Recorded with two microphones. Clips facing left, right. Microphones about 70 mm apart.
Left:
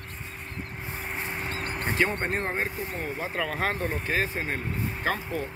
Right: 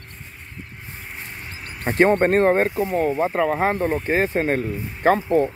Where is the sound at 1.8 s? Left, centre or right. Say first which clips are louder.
Right 11 dB; right.